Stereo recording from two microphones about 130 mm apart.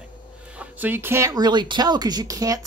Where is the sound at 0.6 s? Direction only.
15° right (ahead or behind).